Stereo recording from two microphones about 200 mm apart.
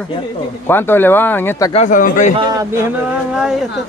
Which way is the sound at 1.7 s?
35° left (ahead or behind).